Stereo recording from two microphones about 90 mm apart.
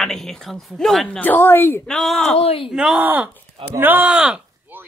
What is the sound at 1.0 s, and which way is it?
Speech, 20° left (ahead or behind).